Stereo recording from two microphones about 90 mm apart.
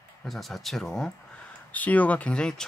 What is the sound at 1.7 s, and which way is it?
Speech, 15° left (ahead or behind).